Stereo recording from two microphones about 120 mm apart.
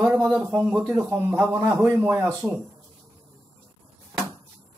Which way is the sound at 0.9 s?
15° right (ahead or behind).